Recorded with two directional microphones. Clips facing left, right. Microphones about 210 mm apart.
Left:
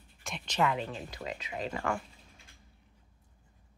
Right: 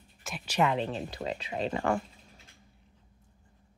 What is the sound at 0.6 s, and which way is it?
Speech, 25° right (ahead or behind).